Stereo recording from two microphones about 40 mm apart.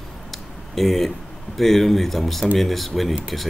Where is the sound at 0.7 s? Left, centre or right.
Centre.